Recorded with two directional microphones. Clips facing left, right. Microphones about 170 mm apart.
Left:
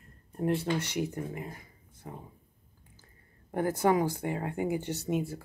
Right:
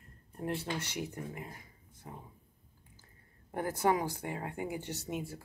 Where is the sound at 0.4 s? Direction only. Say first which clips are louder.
Left 7 dB; 20° left (ahead or behind).